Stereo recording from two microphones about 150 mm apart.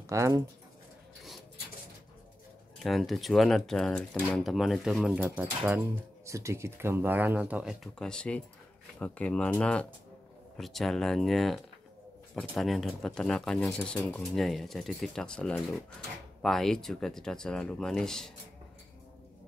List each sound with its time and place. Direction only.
0.0 s speech: 20° right (ahead or behind)
2.8 s speech: centre (ahead or behind)